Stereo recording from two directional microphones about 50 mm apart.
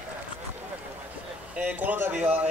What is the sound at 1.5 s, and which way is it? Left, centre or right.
Speech, right.